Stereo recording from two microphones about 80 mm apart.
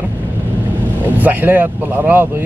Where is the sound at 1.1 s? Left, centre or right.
Right.